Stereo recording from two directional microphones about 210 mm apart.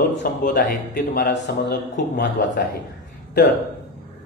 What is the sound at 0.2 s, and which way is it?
Speech, 40° left (ahead or behind).